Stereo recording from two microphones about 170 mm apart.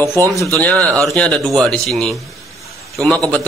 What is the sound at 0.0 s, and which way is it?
Speech, 20° right (ahead or behind).